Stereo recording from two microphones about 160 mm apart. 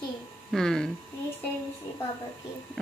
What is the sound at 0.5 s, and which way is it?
Speech, 5° left (ahead or behind).